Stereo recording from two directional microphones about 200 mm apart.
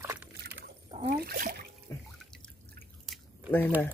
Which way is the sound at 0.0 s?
10° right (ahead or behind).